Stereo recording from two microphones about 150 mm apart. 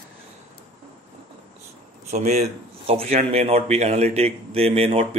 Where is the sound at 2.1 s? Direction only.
50° right (ahead or behind).